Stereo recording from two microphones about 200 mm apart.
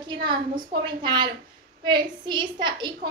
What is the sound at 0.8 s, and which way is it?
A woman's voice, 20° right (ahead or behind).